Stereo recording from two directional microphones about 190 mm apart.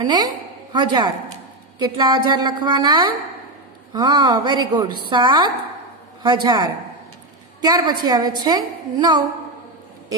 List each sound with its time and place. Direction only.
0.0 s a woman's voice: 20° right (ahead or behind)